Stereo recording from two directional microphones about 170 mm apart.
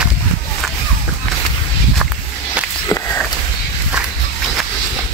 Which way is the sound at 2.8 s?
20° left (ahead or behind).